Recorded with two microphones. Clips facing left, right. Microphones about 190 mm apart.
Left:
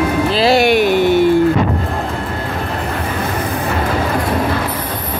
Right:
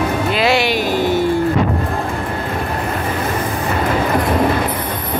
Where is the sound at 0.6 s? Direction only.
60° left (ahead or behind).